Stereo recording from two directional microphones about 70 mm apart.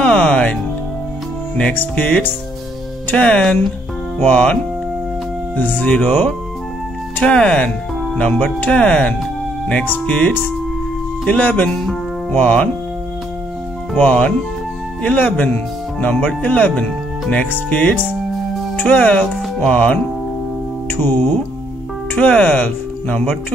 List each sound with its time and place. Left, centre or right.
0.0 s music: centre
1.7 s speech: left
3.2 s speech: centre
5.6 s speech: left
11.7 s speech: centre
12.3 s speech: left
13.9 s speech: centre
20.9 s music: left
22.3 s speech: centre